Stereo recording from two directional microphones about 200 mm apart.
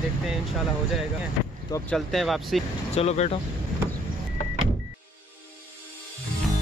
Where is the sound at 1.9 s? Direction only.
Centre (ahead or behind).